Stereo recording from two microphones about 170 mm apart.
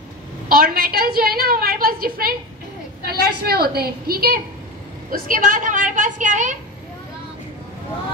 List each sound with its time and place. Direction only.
0.5 s a woman's voice: 60° right (ahead or behind)